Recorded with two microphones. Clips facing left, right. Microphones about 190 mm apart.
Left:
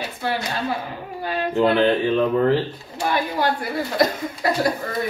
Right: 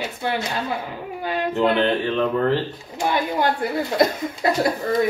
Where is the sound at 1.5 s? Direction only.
Centre (ahead or behind).